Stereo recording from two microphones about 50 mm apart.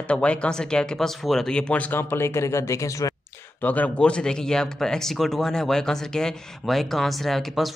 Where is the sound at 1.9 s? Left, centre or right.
Left.